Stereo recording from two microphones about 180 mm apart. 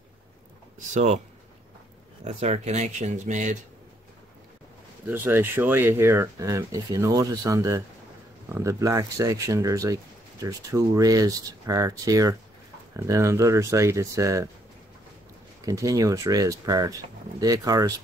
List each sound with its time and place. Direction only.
0.7 s speech: 40° right (ahead or behind)
2.2 s speech: 35° right (ahead or behind)
5.0 s speech: 10° right (ahead or behind)
15.6 s speech: 20° right (ahead or behind)